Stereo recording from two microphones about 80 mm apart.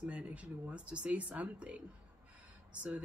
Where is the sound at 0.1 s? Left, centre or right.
Centre.